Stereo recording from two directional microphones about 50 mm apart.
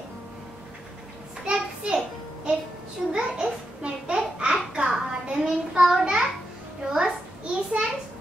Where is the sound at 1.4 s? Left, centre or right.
Centre.